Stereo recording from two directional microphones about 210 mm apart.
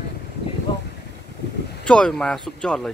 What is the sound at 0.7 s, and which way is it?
Vehicle, 20° left (ahead or behind).